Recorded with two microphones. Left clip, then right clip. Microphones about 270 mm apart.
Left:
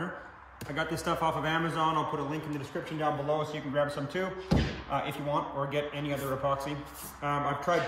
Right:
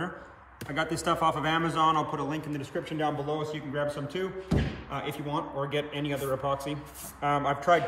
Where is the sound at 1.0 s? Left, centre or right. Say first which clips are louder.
Right 4 dB; centre.